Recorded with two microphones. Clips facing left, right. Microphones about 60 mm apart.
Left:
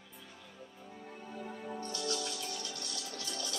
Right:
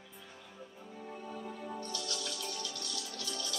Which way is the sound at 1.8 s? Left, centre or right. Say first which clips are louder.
Left 3 dB; left.